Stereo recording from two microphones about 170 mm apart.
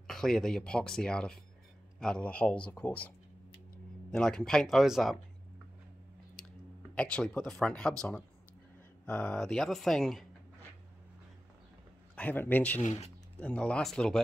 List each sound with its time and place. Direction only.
0.0 s speech: 5° left (ahead or behind)
4.1 s speech: 5° left (ahead or behind)
7.0 s speech: 5° left (ahead or behind)
12.2 s speech: 10° left (ahead or behind)
12.8 s speech: 40° left (ahead or behind)
13.4 s speech: 5° left (ahead or behind)